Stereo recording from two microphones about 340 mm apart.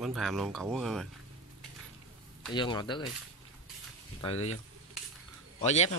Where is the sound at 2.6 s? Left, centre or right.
Centre.